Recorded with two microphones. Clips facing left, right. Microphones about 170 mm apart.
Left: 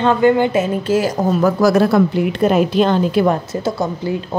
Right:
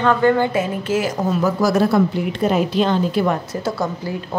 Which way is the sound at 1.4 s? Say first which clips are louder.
Left 4 dB; 65° left (ahead or behind).